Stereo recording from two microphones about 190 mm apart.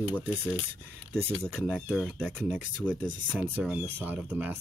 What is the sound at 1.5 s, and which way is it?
Speech, centre (ahead or behind).